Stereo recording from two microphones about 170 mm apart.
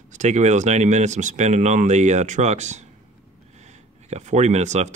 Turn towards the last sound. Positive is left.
turn(degrees=-40)  # may be behind; listen again after turning